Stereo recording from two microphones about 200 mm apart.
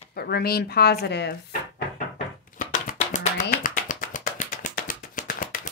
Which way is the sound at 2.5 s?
40° left (ahead or behind).